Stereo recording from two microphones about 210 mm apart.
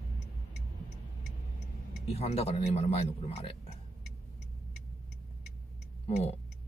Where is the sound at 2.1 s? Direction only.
30° left (ahead or behind).